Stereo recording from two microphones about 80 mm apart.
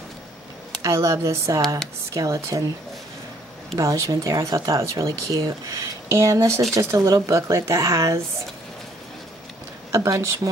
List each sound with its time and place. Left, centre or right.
0.8 s speech: right
3.7 s speech: right
9.9 s speech: right